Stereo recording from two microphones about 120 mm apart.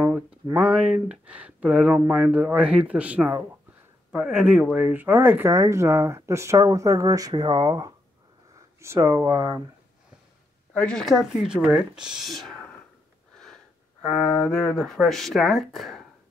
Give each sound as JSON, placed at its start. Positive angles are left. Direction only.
{"t": 0.0, "sound": "speech", "side_deg": -10}
{"t": 5.5, "sound": "speech", "side_deg": -25}
{"t": 10.7, "sound": "speech", "side_deg": 10}
{"t": 14.0, "sound": "speech", "side_deg": 5}